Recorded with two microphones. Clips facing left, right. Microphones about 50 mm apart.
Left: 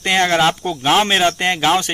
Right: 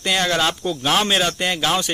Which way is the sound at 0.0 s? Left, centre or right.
Left.